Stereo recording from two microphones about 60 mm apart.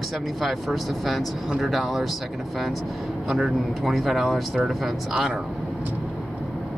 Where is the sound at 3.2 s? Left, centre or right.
Centre.